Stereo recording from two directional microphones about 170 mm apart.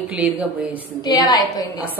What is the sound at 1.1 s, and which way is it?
Speech, 25° left (ahead or behind).